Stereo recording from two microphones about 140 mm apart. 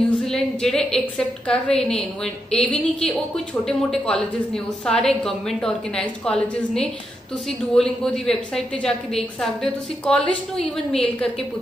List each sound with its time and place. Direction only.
0.2 s a woman's voice: 5° left (ahead or behind)